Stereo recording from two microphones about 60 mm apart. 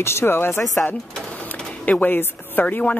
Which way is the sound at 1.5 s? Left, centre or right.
Left.